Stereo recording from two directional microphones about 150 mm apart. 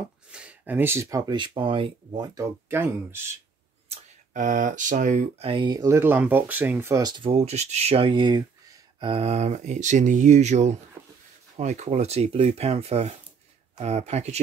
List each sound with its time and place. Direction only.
0.3 s speech: 5° right (ahead or behind); by 2.2 s 35° right (ahead or behind)
2.3 s speech: 15° right (ahead or behind)
3.9 s speech: 55° right (ahead or behind)
5.5 s speech: 30° right (ahead or behind)
7.3 s speech: 45° right (ahead or behind); by 9.1 s 25° right (ahead or behind)
9.1 s speech: 45° right (ahead or behind)